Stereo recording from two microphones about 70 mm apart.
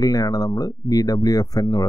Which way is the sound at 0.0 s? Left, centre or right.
Left.